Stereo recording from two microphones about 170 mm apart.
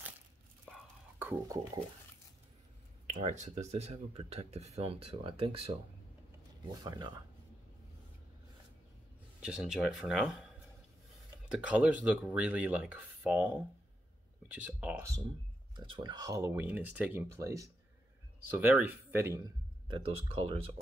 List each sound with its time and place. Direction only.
1.2 s speech: 15° right (ahead or behind)
3.1 s speech: 45° right (ahead or behind)
6.8 s speech: 20° right (ahead or behind)
9.4 s speech: 5° right (ahead or behind)
15.7 s speech: 30° right (ahead or behind)
19.9 s speech: 30° right (ahead or behind)